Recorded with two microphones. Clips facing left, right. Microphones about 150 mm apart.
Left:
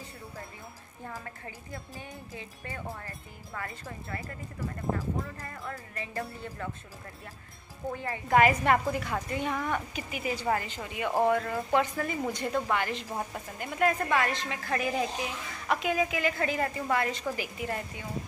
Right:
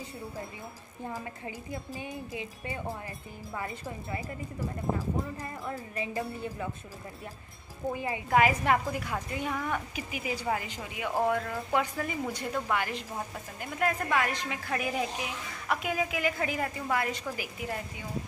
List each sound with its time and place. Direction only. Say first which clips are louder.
1.0 s speech: right 4 dB; 15° right (ahead or behind)
5.4 s speech: right 3 dB; 20° right (ahead or behind)
7.9 s a woman's voice: left 1 dB; 10° right (ahead or behind)